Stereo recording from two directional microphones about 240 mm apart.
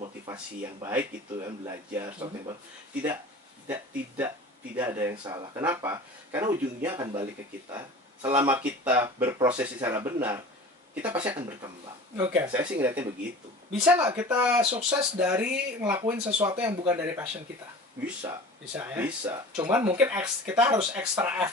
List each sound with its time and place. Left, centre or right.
0.0 s a sound: centre
0.8 s speech: centre
14.6 s speech: right
14.9 s speech: centre
16.3 s speech: right
16.5 s speech: centre
18.2 s speech: centre